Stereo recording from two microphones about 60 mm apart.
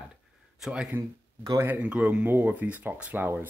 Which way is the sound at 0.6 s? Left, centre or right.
Centre.